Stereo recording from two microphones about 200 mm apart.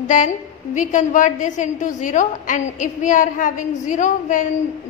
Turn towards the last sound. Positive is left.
turn(degrees=40)  # may be behind; listen again after turning